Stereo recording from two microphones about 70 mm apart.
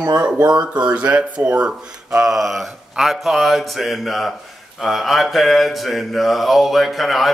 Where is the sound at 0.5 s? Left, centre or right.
Centre.